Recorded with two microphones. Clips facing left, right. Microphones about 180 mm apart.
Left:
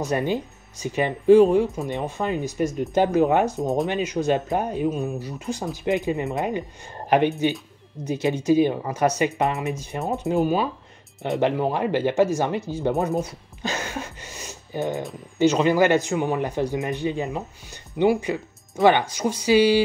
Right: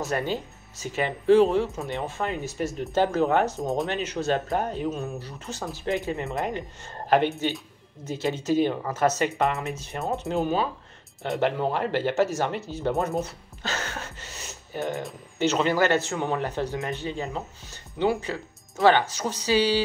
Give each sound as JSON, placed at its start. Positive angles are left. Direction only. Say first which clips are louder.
{"t": 0.0, "sound": "speech", "louder": "left 4 dB", "side_deg": 15}
{"t": 13.2, "sound": "a sound", "louder": "left 3 dB", "side_deg": 15}
{"t": 15.3, "sound": "speech", "louder": "left 5 dB", "side_deg": 15}